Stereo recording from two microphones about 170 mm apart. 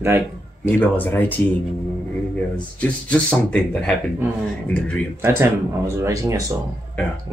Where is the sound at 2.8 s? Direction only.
5° left (ahead or behind).